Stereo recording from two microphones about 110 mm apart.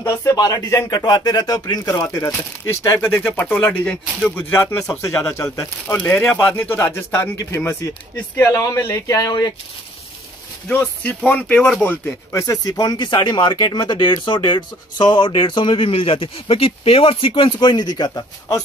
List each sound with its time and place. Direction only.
0.0 s speech: 25° left (ahead or behind)
10.7 s speech: 20° left (ahead or behind); by 18.6 s 35° left (ahead or behind)